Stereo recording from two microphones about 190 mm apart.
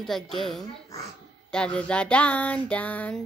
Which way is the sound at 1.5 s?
5° left (ahead or behind).